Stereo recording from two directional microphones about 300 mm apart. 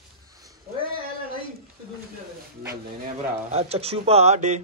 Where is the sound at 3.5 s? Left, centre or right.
Centre.